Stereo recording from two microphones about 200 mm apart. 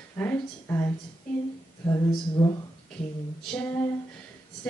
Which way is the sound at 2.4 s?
10° left (ahead or behind).